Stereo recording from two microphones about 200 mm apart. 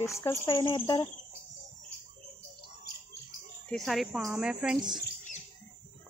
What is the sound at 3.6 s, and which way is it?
Speech, centre (ahead or behind).